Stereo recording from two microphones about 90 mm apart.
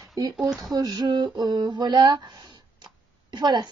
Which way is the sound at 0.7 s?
45° right (ahead or behind).